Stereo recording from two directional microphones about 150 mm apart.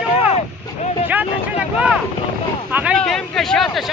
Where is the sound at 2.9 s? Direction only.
Centre (ahead or behind).